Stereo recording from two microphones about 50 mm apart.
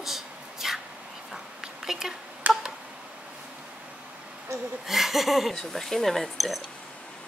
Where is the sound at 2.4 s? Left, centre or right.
Right.